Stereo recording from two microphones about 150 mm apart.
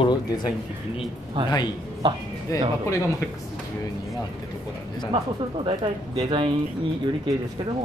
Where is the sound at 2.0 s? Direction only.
35° right (ahead or behind).